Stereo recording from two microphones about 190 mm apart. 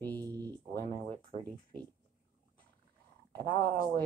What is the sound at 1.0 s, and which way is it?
Speech, 30° right (ahead or behind).